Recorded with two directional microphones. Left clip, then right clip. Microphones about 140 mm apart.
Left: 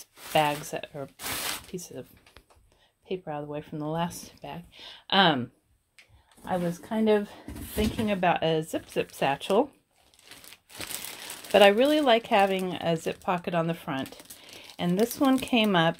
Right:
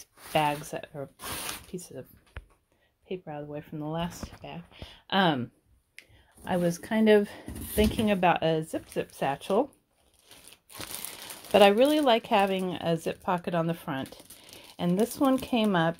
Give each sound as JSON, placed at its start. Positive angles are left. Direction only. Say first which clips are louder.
{"t": 0.0, "sound": "speech", "louder": "left 2 dB", "side_deg": -10}
{"t": 3.1, "sound": "speech", "louder": "left 3 dB", "side_deg": 10}
{"t": 6.5, "sound": "speech", "louder": "right 2 dB", "side_deg": -70}
{"t": 7.0, "sound": "speech", "louder": "right 3 dB", "side_deg": -55}
{"t": 8.4, "sound": "speech", "louder": "left 1 dB", "side_deg": -20}
{"t": 9.1, "sound": "speech", "louder": "left 2 dB", "side_deg": 0}
{"t": 10.8, "sound": "speech", "louder": "left 3 dB", "side_deg": -15}